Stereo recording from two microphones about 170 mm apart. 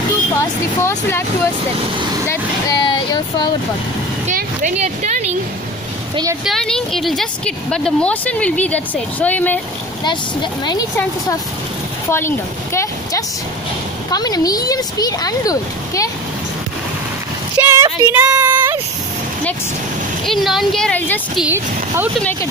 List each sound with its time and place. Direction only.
0.4 s a woman's voice: 15° left (ahead or behind)
2.2 s vehicle: 25° left (ahead or behind)
4.3 s speech: 45° right (ahead or behind)
6.4 s a woman's voice: 5° left (ahead or behind)
10.0 s speech: 25° left (ahead or behind)
12.1 s speech: 15° left (ahead or behind)
17.6 s a sound: 15° right (ahead or behind)
18.0 s speech: 15° right (ahead or behind)
18.5 s vehicle: 10° right (ahead or behind)
20.2 s speech: centre (ahead or behind)
21.4 s speech: 10° right (ahead or behind)